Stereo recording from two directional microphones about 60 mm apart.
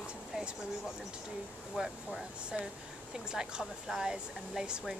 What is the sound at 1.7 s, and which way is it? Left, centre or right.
Speech, centre.